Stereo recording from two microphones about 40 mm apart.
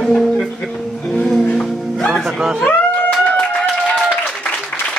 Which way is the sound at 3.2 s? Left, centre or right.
Left.